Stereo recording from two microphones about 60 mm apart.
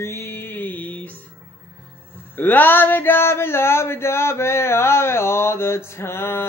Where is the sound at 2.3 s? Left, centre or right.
Left.